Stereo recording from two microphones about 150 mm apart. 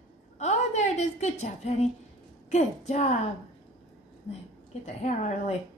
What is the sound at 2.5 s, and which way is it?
Speech, 50° left (ahead or behind).